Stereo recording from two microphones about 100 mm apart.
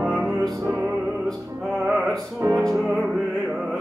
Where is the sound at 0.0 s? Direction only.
5° left (ahead or behind).